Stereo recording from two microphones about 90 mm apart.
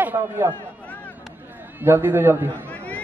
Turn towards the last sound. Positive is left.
turn(degrees=15)  # may be behind; listen again after turning